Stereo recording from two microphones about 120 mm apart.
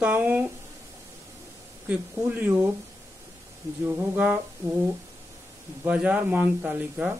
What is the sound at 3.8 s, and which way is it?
Speech, 20° right (ahead or behind).